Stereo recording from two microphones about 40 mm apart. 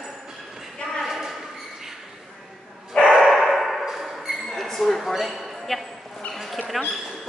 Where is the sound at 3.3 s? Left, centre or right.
Centre.